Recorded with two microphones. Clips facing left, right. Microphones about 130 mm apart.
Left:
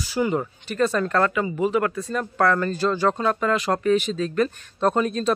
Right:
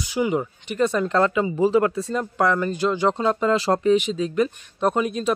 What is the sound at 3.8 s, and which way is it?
Speech, 15° right (ahead or behind).